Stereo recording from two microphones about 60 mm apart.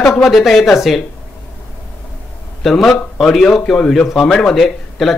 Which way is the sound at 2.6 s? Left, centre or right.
Centre.